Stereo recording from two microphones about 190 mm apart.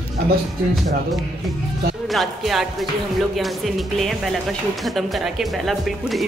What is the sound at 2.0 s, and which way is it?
A man's voice, centre (ahead or behind).